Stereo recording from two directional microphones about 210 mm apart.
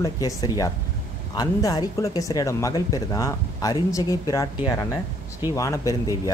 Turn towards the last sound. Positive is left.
turn(degrees=15)  # may be behind; listen again after turning